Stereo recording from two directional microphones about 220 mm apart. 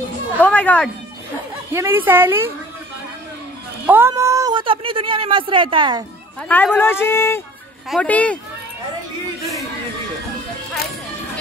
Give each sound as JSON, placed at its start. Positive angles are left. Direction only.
{"t": 0.4, "sound": "speech", "side_deg": 5}
{"t": 1.7, "sound": "a woman's voice", "side_deg": -10}
{"t": 3.8, "sound": "a woman's voice", "side_deg": -10}
{"t": 6.5, "sound": "speech", "side_deg": 10}